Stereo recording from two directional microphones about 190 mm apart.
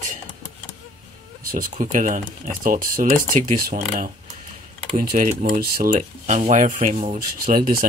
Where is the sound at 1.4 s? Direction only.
45° right (ahead or behind).